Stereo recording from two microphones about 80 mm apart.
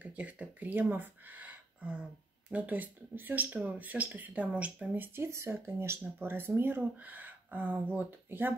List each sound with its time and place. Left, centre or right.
0.0 s speech: centre